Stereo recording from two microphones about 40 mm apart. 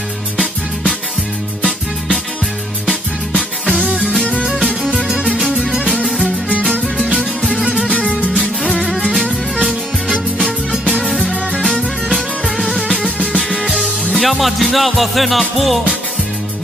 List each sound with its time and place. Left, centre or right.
4.1 s music: left
4.5 s music: centre
8.0 s music: left
9.1 s music: centre
10.7 s music: centre
14.1 s music: centre